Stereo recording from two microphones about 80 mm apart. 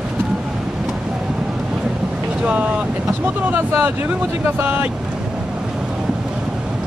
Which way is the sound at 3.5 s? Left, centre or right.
Right.